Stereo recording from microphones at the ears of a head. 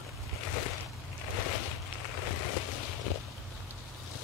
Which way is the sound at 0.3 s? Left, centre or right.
Left.